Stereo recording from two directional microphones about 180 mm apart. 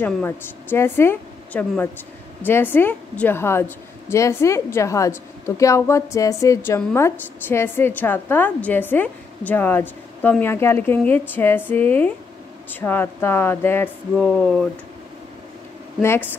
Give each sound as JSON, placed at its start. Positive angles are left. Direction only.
{"t": 0.0, "sound": "a woman's voice", "side_deg": 10}
{"t": 16.0, "sound": "a woman's voice", "side_deg": 15}